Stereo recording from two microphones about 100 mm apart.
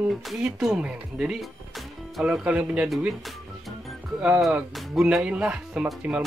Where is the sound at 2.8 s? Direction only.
Centre (ahead or behind).